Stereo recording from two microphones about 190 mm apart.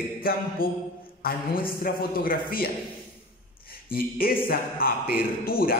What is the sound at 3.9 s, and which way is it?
A man's voice, 50° left (ahead or behind).